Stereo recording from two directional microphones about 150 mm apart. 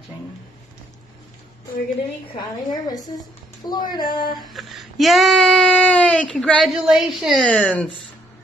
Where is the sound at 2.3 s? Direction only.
25° left (ahead or behind).